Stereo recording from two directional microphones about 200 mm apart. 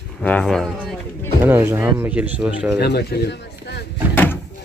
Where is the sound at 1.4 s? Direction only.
10° right (ahead or behind).